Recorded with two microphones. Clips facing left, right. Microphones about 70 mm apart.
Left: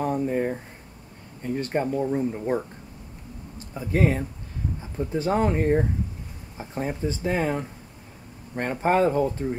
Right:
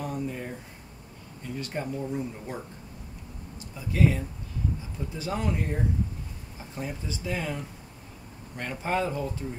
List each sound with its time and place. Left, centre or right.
0.0 s speech: left